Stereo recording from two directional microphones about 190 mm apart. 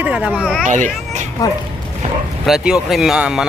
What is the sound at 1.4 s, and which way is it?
Speech, 20° left (ahead or behind).